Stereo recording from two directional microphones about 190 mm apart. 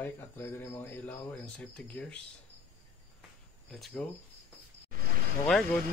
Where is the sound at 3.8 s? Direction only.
Centre (ahead or behind).